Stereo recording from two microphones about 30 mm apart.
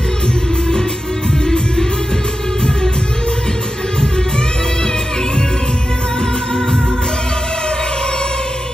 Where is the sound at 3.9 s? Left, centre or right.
Left.